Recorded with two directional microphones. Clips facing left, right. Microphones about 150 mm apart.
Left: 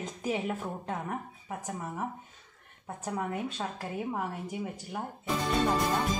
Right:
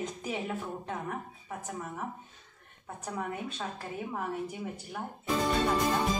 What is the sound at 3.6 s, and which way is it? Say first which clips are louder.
Speech: left 2 dB; 15° left (ahead or behind).